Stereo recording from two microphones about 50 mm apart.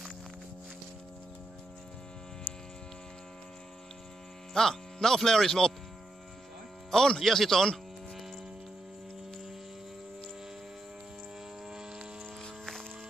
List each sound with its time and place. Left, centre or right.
2.5 s a sound: right
4.6 s speech: centre
6.9 s speech: centre